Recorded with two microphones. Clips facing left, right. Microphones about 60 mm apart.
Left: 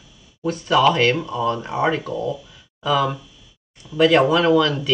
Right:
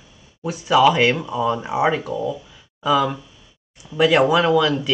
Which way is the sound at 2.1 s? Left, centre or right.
Right.